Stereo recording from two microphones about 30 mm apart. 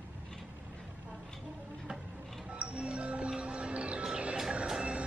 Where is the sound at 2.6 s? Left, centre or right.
Right.